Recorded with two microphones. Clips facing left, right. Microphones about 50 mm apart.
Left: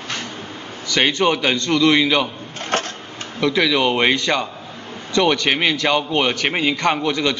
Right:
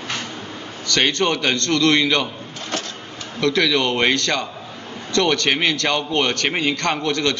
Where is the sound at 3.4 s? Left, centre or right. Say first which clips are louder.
Left 1 dB; centre.